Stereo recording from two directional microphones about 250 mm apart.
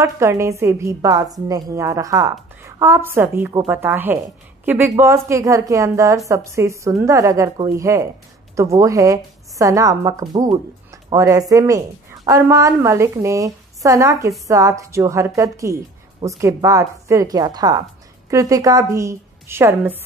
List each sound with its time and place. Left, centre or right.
0.0 s a woman's voice: centre